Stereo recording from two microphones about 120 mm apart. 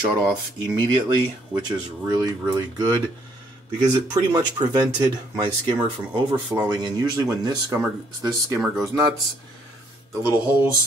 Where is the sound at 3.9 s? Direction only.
25° right (ahead or behind).